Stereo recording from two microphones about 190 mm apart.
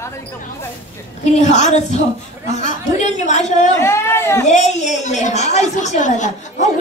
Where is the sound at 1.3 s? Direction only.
35° left (ahead or behind).